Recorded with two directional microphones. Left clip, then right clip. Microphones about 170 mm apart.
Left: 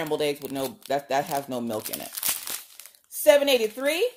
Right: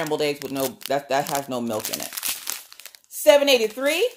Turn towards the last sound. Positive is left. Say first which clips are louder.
# right 3 dB
turn(degrees=-5)  # may be behind; listen again after turning